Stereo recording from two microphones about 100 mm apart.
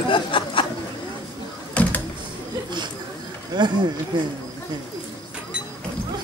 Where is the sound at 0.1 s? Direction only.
55° left (ahead or behind).